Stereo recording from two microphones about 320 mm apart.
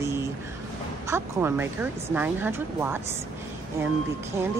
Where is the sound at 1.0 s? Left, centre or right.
Centre.